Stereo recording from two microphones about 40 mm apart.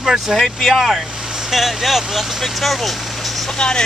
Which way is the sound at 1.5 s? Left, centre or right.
Centre.